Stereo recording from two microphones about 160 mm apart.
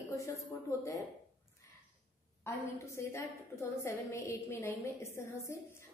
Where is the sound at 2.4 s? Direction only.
20° left (ahead or behind).